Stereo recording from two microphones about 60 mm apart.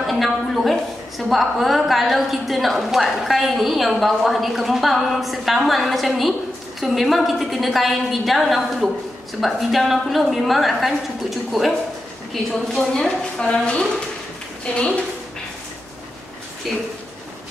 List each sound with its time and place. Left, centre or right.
0.0 s a woman's voice: centre
16.7 s a woman's voice: centre